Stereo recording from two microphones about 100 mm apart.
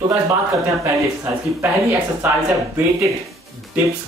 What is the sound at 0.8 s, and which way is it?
Speech, 30° right (ahead or behind).